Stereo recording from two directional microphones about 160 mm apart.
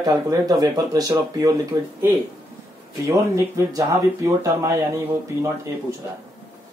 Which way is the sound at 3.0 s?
20° right (ahead or behind).